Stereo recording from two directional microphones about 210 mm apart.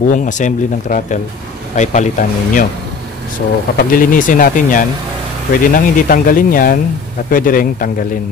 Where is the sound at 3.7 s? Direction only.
40° left (ahead or behind).